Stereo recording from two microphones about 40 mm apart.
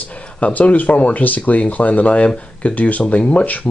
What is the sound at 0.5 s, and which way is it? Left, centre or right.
Speech, left.